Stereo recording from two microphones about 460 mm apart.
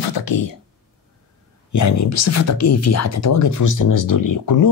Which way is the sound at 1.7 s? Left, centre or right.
Left.